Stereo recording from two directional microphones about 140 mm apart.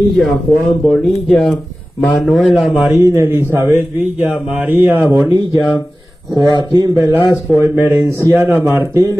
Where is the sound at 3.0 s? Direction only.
20° right (ahead or behind).